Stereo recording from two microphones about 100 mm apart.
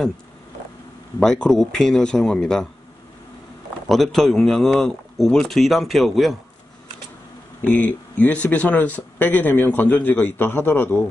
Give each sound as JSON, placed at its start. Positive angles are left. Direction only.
{"t": 1.2, "sound": "speech", "side_deg": 5}
{"t": 3.9, "sound": "speech", "side_deg": 5}
{"t": 7.6, "sound": "speech", "side_deg": 15}